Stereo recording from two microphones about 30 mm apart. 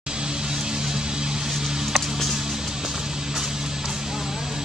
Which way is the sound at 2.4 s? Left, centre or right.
Centre.